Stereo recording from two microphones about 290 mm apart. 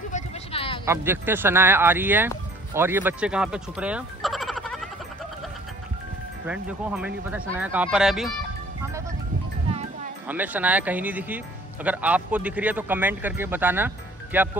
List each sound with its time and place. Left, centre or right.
0.1 s a sound: centre
0.8 s speech: centre
6.4 s speech: centre
10.2 s speech: centre